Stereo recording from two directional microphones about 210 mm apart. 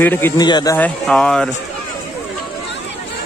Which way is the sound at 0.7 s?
5° left (ahead or behind).